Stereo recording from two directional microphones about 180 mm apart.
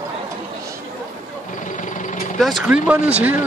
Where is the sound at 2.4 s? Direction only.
Centre (ahead or behind).